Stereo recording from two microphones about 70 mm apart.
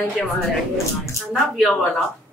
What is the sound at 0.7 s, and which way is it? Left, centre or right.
Speech, left.